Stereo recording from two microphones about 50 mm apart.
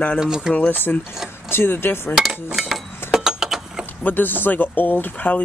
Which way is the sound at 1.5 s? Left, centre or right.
Left.